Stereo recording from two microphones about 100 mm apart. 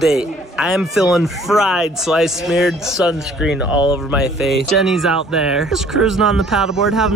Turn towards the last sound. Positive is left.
turn(degrees=-5)  # may be behind; listen again after turning